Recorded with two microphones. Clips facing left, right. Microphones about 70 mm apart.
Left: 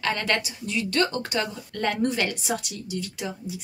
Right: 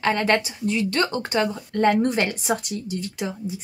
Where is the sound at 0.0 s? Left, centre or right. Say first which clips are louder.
Right 5 dB; right.